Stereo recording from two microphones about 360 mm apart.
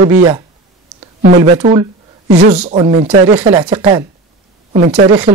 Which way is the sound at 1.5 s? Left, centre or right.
Centre.